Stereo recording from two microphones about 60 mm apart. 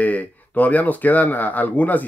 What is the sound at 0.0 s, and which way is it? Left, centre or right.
Speech, left.